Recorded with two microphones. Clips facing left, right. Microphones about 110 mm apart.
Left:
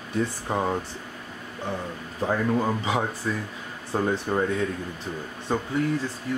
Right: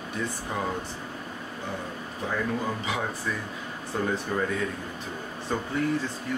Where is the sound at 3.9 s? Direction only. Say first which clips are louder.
Left 4 dB; 35° left (ahead or behind).